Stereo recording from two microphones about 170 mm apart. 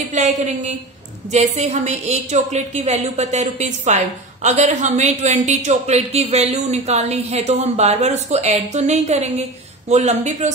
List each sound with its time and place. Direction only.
0.1 s a woman's voice: 45° right (ahead or behind)